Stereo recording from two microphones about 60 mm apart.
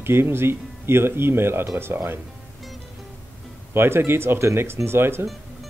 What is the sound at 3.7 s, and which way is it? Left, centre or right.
Speech, right.